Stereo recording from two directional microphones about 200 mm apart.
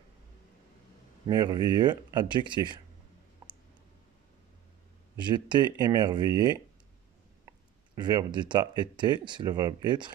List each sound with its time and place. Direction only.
1.2 s speech: 20° right (ahead or behind)
5.1 s speech: 20° right (ahead or behind)